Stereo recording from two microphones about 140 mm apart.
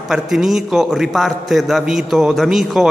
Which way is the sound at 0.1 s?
Centre (ahead or behind).